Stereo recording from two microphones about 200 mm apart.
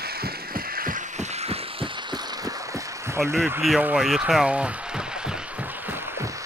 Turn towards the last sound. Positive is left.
turn(degrees=-5)  # may be behind; listen again after turning